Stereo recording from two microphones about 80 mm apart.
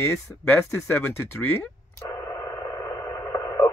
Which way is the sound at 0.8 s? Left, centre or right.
Left.